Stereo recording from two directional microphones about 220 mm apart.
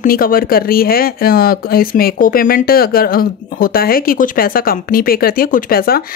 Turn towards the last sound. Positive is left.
turn(degrees=45)  # may be behind; listen again after turning